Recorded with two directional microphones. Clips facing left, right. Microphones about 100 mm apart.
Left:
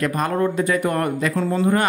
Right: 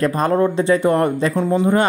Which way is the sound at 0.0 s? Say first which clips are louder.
Right 4 dB; 30° right (ahead or behind).